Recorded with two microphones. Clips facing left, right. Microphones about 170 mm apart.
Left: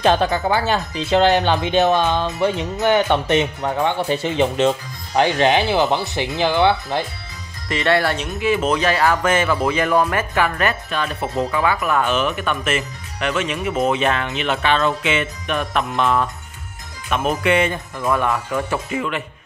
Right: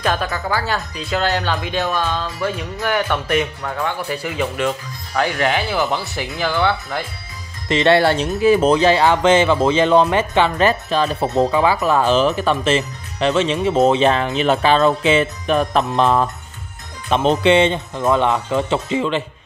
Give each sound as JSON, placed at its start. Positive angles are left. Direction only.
{"t": 0.0, "sound": "speech", "side_deg": 25}
{"t": 7.6, "sound": "speech", "side_deg": -25}